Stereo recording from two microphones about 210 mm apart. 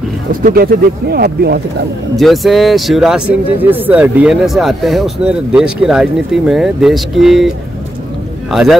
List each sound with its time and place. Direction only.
0.3 s speech: 40° right (ahead or behind)
2.1 s a man's voice: centre (ahead or behind)